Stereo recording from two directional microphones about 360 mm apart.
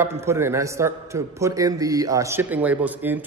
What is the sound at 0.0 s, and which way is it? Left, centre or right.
A man's voice, centre.